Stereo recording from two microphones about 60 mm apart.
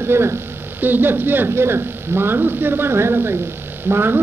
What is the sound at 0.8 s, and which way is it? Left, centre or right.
A man's voice, right.